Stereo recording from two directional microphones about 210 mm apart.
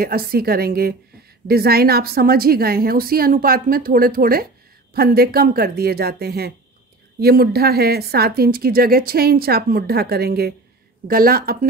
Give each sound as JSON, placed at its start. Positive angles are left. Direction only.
{"t": 0.0, "sound": "speech", "side_deg": -45}